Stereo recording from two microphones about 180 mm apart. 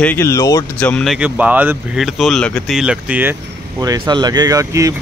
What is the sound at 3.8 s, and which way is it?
Speech, 20° right (ahead or behind).